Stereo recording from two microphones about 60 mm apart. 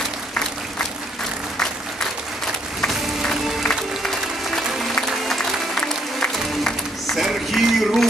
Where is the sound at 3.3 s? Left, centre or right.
Centre.